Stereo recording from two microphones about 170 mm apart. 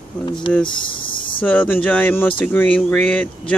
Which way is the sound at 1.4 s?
10° left (ahead or behind).